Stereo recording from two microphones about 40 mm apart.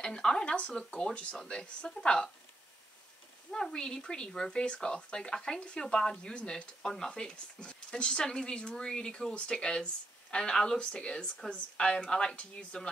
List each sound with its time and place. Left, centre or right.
0.0 s speech: centre
0.6 s speech: left
3.5 s speech: centre
11.2 s speech: centre